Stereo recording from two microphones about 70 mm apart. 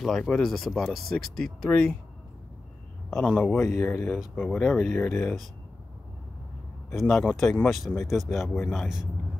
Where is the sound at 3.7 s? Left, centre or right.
Left.